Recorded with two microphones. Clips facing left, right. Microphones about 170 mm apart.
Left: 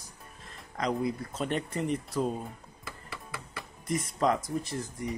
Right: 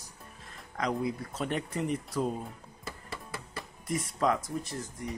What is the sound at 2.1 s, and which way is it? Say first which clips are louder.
Speech: left 1 dB; 5° left (ahead or behind).